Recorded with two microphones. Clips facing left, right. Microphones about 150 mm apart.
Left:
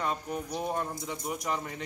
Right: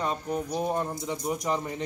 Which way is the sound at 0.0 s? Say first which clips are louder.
Right 3 dB; 25° right (ahead or behind).